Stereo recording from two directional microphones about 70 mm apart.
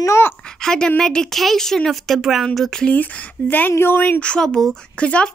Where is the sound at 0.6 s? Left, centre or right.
Centre.